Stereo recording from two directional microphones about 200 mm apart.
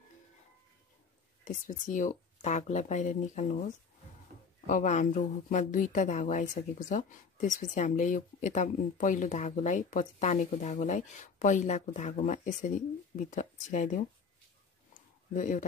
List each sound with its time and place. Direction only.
1.7 s speech: 40° left (ahead or behind)
15.3 s speech: 40° left (ahead or behind)